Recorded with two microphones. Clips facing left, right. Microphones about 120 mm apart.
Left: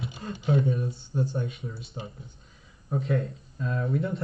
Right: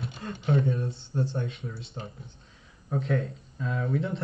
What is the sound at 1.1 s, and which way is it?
Speech, 10° left (ahead or behind).